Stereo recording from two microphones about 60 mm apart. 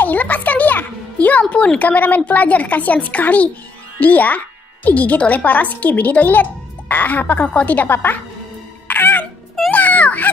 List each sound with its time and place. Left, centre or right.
0.0 s music: left
1.8 s a woman's voice: left
8.8 s music: left
9.7 s baby cry: left